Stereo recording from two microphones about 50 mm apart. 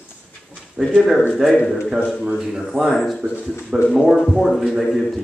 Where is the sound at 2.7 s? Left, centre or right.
Centre.